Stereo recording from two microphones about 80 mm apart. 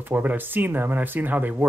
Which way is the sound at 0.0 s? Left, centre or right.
Right.